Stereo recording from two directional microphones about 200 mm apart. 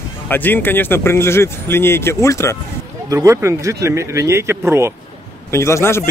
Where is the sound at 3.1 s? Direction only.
15° right (ahead or behind).